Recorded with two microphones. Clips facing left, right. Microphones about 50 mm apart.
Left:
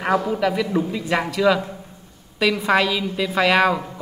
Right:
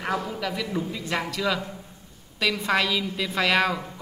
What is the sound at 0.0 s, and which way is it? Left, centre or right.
A woman's voice, left.